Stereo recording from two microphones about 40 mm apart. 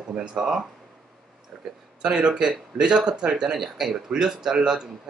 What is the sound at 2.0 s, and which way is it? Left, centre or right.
Speech, right.